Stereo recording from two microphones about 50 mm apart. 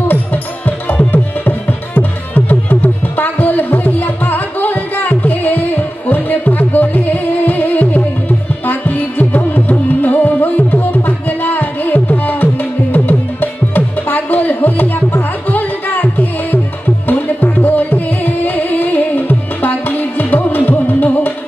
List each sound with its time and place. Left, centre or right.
0.1 s music: left